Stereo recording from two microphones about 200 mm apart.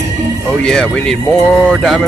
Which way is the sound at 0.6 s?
5° left (ahead or behind).